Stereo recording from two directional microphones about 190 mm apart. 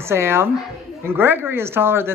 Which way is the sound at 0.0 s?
15° right (ahead or behind).